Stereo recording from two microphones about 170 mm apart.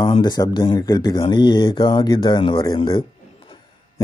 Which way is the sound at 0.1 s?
25° left (ahead or behind).